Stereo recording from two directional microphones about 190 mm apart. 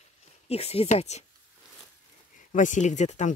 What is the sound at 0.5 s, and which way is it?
Speech, 35° left (ahead or behind).